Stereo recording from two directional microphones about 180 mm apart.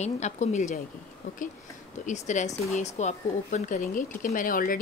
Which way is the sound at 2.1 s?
40° left (ahead or behind).